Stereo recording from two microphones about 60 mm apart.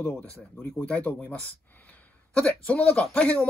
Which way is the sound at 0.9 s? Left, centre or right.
Left.